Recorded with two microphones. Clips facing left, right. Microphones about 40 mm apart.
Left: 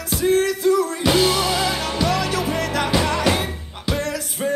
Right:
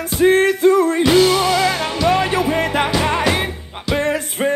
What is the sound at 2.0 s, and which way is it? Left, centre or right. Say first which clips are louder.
Music: right 6 dB; right.